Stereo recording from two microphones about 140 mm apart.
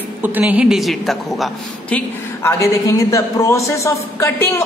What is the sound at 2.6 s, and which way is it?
A woman's voice, 20° left (ahead or behind).